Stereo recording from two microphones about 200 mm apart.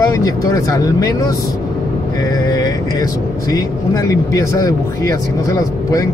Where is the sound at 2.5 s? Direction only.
20° left (ahead or behind).